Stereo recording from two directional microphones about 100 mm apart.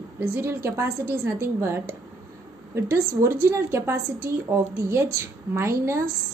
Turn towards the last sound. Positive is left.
turn(degrees=-30)  # may be behind; listen again after turning